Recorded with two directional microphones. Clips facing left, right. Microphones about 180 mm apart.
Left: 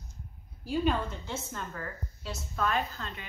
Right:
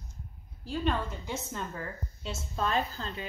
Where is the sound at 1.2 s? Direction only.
20° right (ahead or behind).